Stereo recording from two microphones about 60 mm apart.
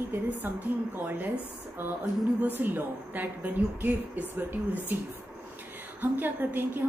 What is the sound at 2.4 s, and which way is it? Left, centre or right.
A woman's voice, right.